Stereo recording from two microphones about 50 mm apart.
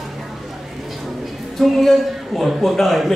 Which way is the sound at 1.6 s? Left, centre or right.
Centre.